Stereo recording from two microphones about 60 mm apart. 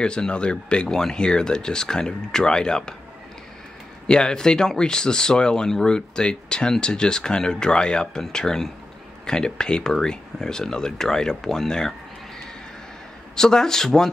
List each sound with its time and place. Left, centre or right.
0.0 s speech: centre
4.1 s speech: centre
13.4 s speech: centre